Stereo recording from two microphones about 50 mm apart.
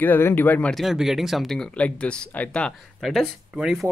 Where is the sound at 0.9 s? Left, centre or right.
Centre.